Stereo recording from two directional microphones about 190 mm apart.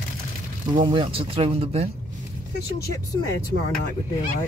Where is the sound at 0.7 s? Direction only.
25° right (ahead or behind).